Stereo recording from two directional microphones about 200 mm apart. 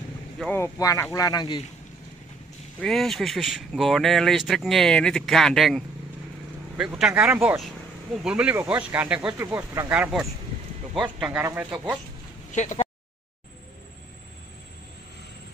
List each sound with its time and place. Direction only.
0.4 s speech: 10° left (ahead or behind)
2.8 s speech: centre (ahead or behind)
12.4 s speech: 35° left (ahead or behind)